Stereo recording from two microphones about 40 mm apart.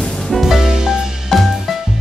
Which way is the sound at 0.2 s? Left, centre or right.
Centre.